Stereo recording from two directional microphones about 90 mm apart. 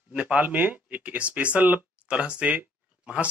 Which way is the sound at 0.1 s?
15° right (ahead or behind).